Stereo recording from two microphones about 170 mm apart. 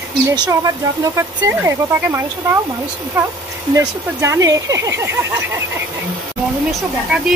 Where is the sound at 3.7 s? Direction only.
15° right (ahead or behind).